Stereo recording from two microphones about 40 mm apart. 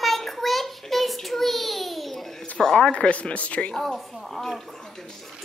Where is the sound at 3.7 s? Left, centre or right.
Centre.